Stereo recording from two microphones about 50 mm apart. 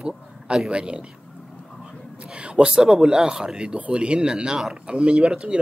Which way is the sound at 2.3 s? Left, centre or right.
Right.